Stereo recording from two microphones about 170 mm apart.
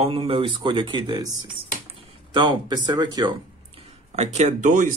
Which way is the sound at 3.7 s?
40° right (ahead or behind).